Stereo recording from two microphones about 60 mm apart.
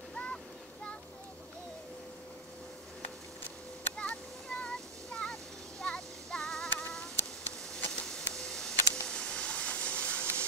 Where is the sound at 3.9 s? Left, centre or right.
Centre.